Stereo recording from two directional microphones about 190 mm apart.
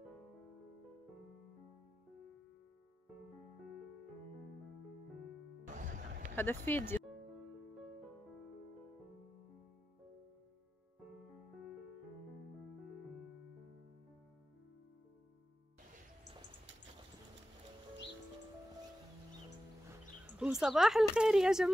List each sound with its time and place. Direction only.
5.7 s music: 40° right (ahead or behind)
6.3 s speech: 10° left (ahead or behind)
20.3 s a woman's voice: 5° right (ahead or behind)